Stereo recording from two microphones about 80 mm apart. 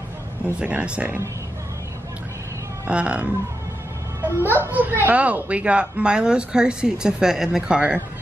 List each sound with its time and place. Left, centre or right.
0.6 s speech: centre
2.9 s speech: centre
4.2 s a child's voice: right